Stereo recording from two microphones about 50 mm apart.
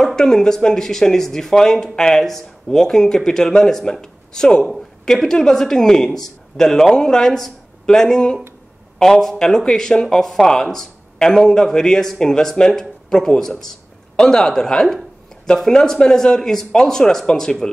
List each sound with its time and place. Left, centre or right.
0.0 s speech: centre